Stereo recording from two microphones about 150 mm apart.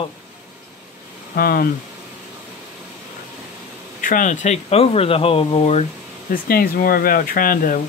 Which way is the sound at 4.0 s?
60° left (ahead or behind).